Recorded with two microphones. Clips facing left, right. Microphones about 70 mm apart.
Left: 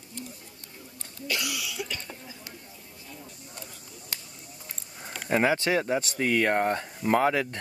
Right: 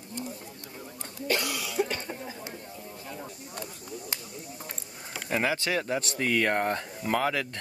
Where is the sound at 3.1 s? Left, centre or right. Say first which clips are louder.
Right 4 dB; right.